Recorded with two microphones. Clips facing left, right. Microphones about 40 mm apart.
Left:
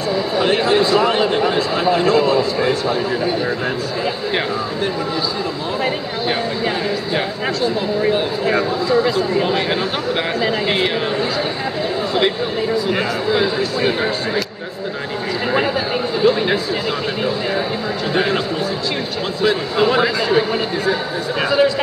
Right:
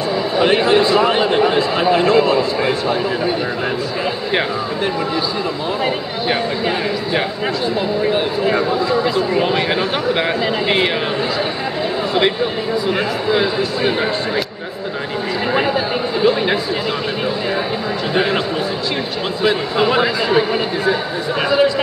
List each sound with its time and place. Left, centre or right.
0.1 s a man's voice: centre
8.6 s a man's voice: centre
13.3 s a man's voice: centre
15.5 s a sound: centre
18.1 s a man's voice: centre
19.4 s a man's voice: centre